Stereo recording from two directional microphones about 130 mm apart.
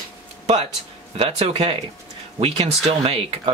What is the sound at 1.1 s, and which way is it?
Speech, 45° right (ahead or behind).